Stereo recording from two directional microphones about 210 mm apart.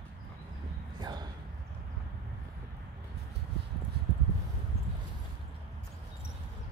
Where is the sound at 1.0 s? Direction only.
20° right (ahead or behind).